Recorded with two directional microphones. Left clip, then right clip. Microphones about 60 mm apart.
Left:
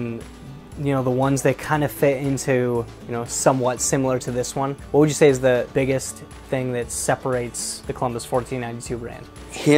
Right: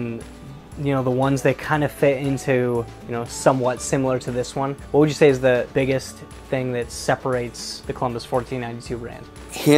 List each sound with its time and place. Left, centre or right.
0.8 s speech: left
3.6 s speech: left
9.5 s music: right